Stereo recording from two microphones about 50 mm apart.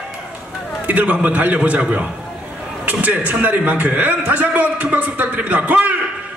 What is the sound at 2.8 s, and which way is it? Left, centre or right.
A man's voice, right.